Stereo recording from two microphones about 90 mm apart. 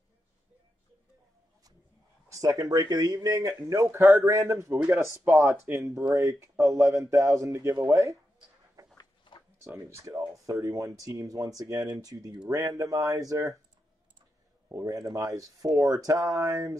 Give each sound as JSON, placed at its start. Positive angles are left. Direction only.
{"t": 2.2, "sound": "speech", "side_deg": -40}
{"t": 5.3, "sound": "speech", "side_deg": -15}
{"t": 5.9, "sound": "speech", "side_deg": -40}
{"t": 8.9, "sound": "a sound", "side_deg": 60}
{"t": 9.7, "sound": "speech", "side_deg": -30}
{"t": 14.7, "sound": "speech", "side_deg": -40}